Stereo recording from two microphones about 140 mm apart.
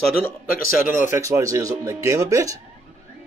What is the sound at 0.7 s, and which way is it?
Speech, 70° left (ahead or behind).